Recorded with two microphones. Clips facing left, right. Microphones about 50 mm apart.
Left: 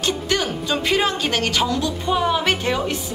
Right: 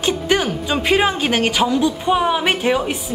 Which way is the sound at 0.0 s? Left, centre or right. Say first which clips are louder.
Right 4 dB; right.